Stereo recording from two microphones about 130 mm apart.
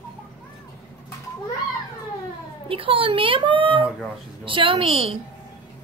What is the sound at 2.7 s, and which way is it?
A woman's voice, 45° right (ahead or behind).